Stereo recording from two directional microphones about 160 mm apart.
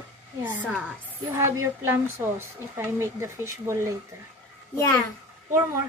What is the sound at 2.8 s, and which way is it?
Speech, 15° right (ahead or behind).